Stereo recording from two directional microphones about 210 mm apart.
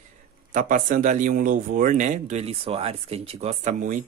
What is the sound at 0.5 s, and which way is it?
Speech, 40° right (ahead or behind).